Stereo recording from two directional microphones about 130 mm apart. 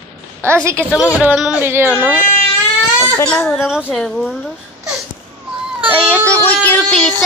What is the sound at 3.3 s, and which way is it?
A child's voice, centre (ahead or behind).